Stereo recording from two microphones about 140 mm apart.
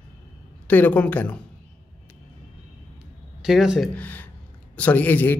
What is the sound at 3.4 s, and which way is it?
Speech, 5° right (ahead or behind).